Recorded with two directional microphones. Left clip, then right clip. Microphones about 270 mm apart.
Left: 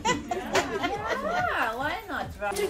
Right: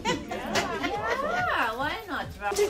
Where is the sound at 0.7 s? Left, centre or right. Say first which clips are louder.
Right 1 dB; left.